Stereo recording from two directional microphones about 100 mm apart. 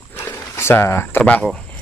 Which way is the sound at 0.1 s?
25° left (ahead or behind).